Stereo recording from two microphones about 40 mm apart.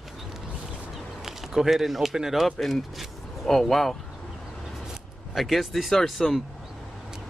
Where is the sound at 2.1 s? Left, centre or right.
Centre.